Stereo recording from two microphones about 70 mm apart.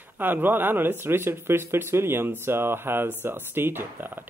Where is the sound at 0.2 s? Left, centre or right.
Right.